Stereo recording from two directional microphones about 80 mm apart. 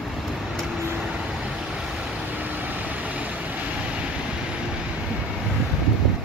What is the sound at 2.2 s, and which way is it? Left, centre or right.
Vehicle, right.